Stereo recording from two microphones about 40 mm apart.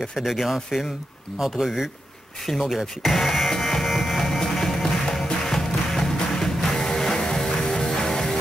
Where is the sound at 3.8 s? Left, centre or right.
Centre.